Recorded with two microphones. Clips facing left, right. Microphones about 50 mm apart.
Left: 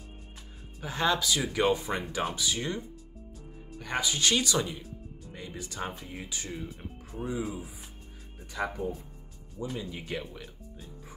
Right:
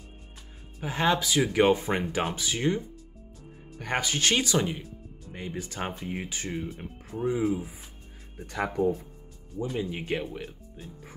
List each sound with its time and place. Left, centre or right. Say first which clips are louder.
0.7 s speech: right 2 dB; right
3.7 s speech: right 2 dB; right
8.4 s speech: right 3 dB; right
9.6 s speech: right 5 dB; right